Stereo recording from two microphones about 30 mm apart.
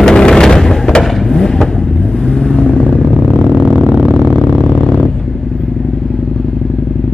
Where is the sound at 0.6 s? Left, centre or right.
Centre.